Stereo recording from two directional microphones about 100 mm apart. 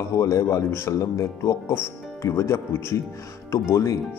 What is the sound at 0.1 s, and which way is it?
Speech, 30° left (ahead or behind).